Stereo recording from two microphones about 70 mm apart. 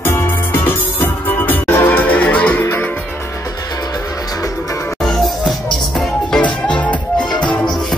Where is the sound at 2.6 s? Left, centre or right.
Left.